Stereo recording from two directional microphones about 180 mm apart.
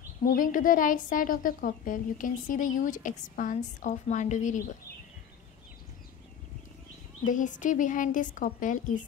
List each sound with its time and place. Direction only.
0.2 s a woman's voice: 50° left (ahead or behind)
7.2 s a woman's voice: 45° left (ahead or behind)